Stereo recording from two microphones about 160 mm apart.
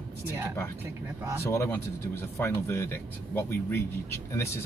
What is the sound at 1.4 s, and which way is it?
Speech, 15° left (ahead or behind).